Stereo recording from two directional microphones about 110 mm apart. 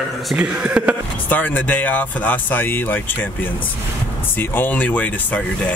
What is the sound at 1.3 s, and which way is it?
Speech, 15° left (ahead or behind).